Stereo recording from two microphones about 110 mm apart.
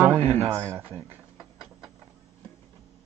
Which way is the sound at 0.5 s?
25° right (ahead or behind).